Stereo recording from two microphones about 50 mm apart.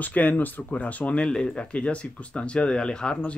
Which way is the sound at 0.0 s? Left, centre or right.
Left.